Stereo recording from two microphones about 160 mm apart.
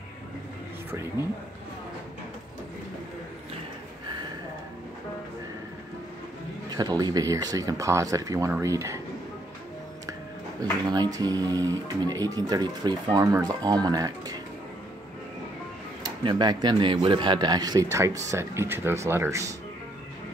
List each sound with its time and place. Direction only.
6.7 s speech: 25° right (ahead or behind)
10.6 s speech: 25° right (ahead or behind)
16.0 s speech: 25° right (ahead or behind)